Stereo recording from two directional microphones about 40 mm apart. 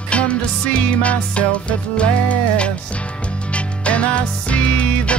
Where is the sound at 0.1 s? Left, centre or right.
Left.